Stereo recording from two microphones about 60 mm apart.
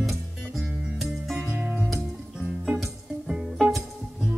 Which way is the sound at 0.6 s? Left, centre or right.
Centre.